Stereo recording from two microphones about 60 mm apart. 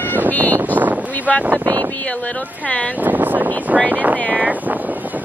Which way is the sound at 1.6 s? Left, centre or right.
Right.